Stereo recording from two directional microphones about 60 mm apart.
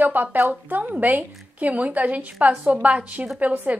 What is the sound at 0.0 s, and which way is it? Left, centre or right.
A woman's voice, right.